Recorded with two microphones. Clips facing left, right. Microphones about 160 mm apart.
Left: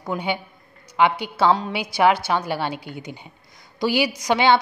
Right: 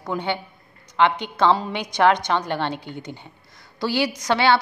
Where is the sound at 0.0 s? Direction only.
10° left (ahead or behind).